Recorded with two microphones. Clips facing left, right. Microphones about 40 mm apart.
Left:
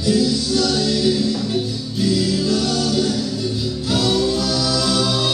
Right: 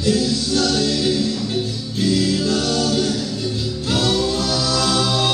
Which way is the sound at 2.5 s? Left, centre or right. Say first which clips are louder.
Even; right.